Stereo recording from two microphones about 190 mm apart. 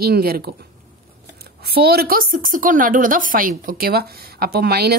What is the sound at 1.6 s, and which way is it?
A woman's voice, 55° right (ahead or behind).